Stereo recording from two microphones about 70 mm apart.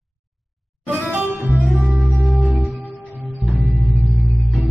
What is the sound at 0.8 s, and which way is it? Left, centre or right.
Music, right.